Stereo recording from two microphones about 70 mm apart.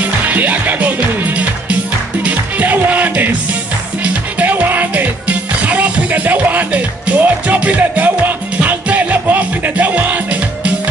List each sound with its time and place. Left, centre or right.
0.0 s music: right